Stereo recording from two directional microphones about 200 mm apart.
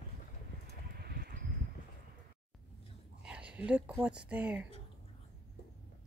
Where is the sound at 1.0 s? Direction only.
50° right (ahead or behind).